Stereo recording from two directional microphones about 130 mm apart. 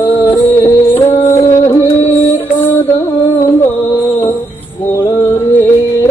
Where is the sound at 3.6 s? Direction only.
20° left (ahead or behind).